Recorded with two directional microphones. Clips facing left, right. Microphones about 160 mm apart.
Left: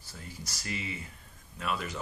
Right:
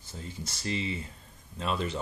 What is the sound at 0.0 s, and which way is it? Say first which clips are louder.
Speech: right 4 dB; 25° right (ahead or behind).